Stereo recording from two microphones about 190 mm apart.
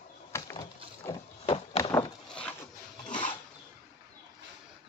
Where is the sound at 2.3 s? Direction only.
5° left (ahead or behind).